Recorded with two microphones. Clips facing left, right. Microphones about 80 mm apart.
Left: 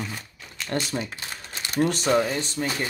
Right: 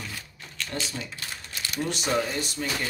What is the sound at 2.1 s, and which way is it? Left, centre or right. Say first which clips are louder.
Speech: left 4 dB; left.